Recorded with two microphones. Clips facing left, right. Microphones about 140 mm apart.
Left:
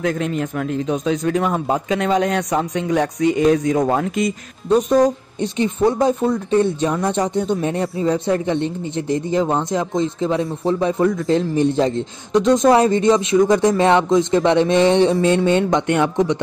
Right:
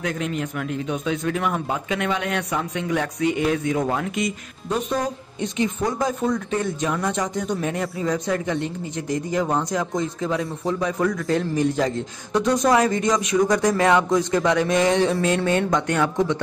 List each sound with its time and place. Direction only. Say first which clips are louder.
0.0 s a man's voice: left 5 dB; 40° left (ahead or behind); by 16.3 s 20° left (ahead or behind)